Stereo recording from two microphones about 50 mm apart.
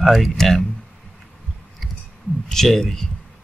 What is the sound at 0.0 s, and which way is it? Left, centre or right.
Speech, centre.